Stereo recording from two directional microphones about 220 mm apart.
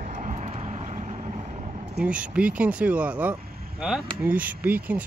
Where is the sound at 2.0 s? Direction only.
5° right (ahead or behind).